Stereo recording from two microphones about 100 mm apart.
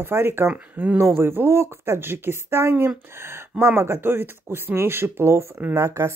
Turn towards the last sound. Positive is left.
turn(degrees=-30)  # may be behind; listen again after turning